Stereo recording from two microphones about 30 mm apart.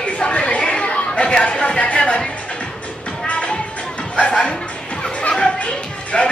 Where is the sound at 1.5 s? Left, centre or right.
Left.